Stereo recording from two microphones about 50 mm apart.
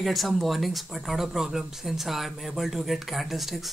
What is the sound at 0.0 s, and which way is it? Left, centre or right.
Speech, centre.